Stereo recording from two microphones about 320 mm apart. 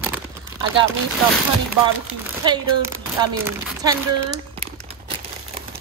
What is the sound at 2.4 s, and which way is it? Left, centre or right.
Speech, centre.